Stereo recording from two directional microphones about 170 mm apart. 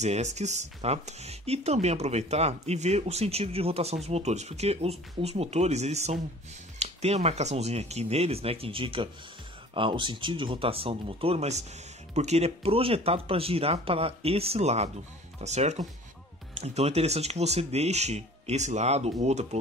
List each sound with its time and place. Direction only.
0.0 s speech: 40° right (ahead or behind)